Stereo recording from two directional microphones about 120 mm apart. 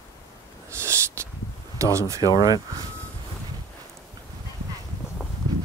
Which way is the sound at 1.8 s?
25° right (ahead or behind).